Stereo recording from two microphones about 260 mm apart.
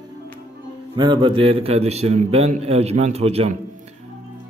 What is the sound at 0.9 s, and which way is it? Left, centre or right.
A man's voice, centre.